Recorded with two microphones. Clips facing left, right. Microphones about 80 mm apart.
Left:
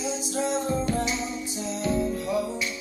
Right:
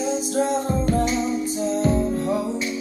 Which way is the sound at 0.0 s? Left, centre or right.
Right.